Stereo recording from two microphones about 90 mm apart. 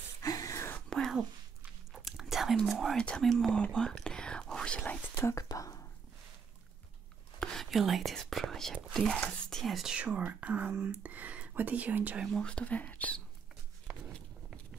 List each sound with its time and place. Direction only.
0.2 s a sound: 40° left (ahead or behind)
0.8 s a sound: 5° left (ahead or behind)
2.0 s whispering: 5° right (ahead or behind)
3.1 s speech: 5° left (ahead or behind)
3.6 s whispering: 10° left (ahead or behind)
5.1 s whispering: 35° left (ahead or behind)
7.3 s whispering: 5° left (ahead or behind)
8.9 s speech: 5° left (ahead or behind)
9.9 s speech: 15° right (ahead or behind)
12.3 s speech: 10° left (ahead or behind)